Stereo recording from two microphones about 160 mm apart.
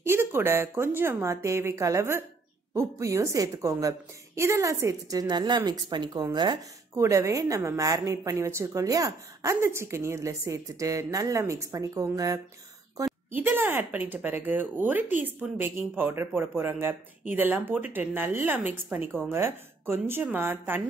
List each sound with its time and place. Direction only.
0.0 s a woman's voice: 15° right (ahead or behind)